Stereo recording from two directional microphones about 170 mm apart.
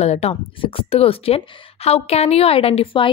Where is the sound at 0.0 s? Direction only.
40° left (ahead or behind).